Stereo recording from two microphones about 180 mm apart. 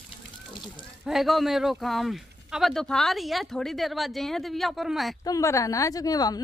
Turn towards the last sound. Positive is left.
turn(degrees=20)  # may be behind; listen again after turning